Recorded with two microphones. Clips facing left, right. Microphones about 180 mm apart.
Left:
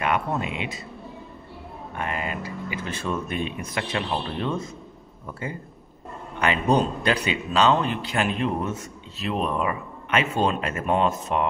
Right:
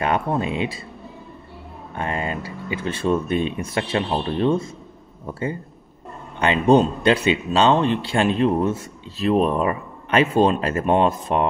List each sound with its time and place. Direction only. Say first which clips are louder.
0.0 s speech: right 4 dB; 30° right (ahead or behind)
2.0 s speech: right 4 dB; 30° right (ahead or behind)
6.4 s speech: right 6 dB; 25° right (ahead or behind)